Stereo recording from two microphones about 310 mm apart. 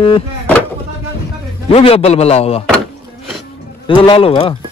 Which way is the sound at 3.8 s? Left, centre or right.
Centre.